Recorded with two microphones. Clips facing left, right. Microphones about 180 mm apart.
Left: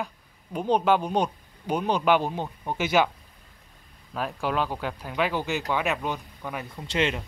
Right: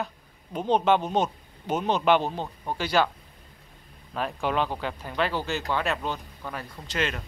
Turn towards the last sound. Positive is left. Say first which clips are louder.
# left 3 dB
turn(degrees=25)  # may be behind; listen again after turning